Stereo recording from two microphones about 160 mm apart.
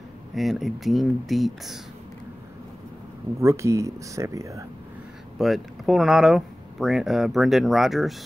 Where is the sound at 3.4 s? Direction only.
20° right (ahead or behind).